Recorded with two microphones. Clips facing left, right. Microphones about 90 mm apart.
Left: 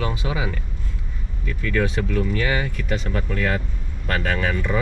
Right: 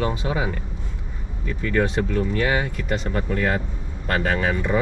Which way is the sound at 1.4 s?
15° right (ahead or behind).